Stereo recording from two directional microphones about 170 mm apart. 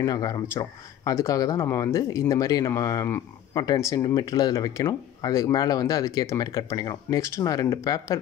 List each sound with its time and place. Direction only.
0.0 s speech: 25° left (ahead or behind)